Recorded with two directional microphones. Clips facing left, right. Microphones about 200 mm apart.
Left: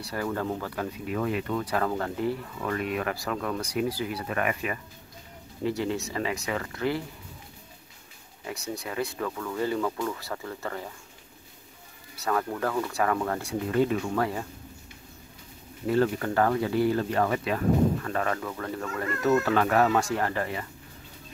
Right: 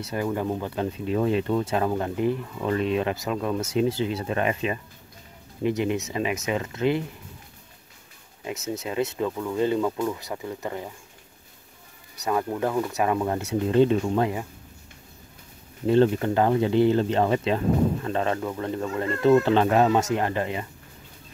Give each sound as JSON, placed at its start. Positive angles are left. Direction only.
{"t": 0.0, "sound": "speech", "side_deg": -20}
{"t": 8.5, "sound": "speech", "side_deg": -20}
{"t": 12.2, "sound": "speech", "side_deg": -15}
{"t": 15.9, "sound": "speech", "side_deg": -25}